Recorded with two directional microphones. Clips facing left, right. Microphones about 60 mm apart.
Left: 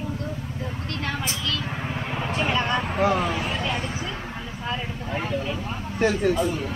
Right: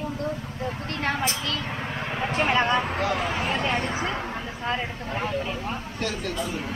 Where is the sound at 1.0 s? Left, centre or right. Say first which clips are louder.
Right 4 dB; right.